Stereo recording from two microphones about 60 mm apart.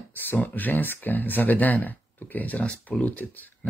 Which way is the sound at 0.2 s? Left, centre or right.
Left.